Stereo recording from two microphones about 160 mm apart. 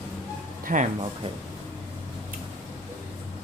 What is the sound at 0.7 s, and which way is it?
Speech, 55° right (ahead or behind).